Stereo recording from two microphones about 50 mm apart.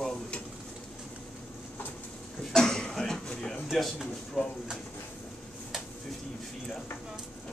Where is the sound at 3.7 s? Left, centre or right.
Centre.